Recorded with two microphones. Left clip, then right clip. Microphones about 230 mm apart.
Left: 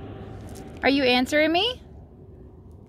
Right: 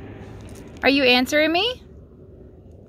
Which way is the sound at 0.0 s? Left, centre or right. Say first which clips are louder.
Even; left.